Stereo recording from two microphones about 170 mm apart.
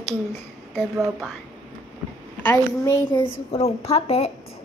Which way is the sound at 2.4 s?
15° left (ahead or behind).